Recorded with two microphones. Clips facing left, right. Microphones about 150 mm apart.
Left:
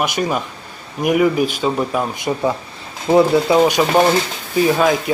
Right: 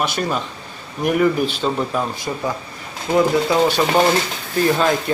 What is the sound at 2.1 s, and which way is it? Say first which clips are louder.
Speech: left 5 dB; 20° left (ahead or behind).